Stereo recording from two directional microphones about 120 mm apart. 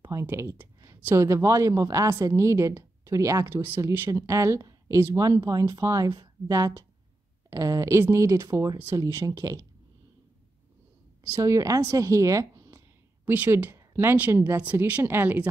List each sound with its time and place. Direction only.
0.0 s speech: 25° right (ahead or behind)
11.3 s a woman's voice: 25° right (ahead or behind)
13.2 s speech: 15° right (ahead or behind)